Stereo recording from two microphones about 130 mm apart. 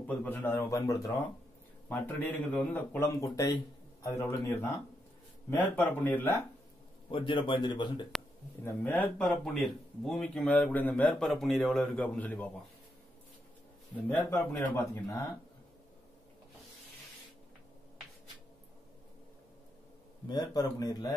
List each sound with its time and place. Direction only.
0.0 s speech: 10° left (ahead or behind)
0.7 s speech: 25° left (ahead or behind)
1.9 s speech: 15° left (ahead or behind)
3.2 s speech: 30° left (ahead or behind)
7.1 s a man's voice: 40° left (ahead or behind)
8.6 s speech: 15° left (ahead or behind)
14.6 s speech: 20° left (ahead or behind)
20.2 s speech: 30° left (ahead or behind)